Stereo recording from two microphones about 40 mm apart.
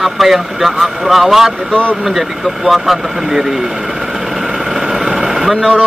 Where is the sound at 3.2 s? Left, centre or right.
Centre.